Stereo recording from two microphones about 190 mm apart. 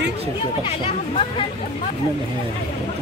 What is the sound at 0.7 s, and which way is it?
Speech, 30° left (ahead or behind).